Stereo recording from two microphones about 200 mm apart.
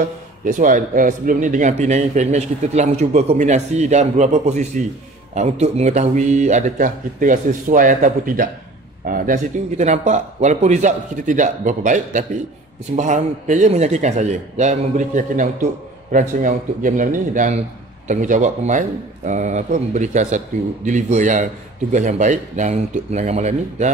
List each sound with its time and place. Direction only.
0.5 s speech: 40° right (ahead or behind)